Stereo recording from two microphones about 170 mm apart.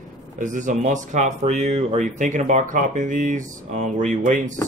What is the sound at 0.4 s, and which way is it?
Speech, 50° right (ahead or behind).